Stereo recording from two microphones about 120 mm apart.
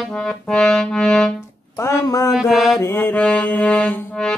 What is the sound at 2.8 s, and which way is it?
Music, 15° left (ahead or behind).